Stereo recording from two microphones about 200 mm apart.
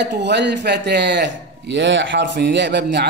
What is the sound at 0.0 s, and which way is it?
A man's voice, 60° right (ahead or behind).